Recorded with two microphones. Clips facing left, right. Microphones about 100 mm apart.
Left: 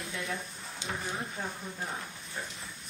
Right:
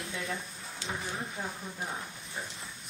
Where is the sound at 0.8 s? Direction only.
20° left (ahead or behind).